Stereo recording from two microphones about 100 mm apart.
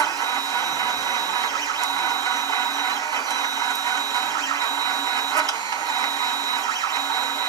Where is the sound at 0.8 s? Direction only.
40° right (ahead or behind).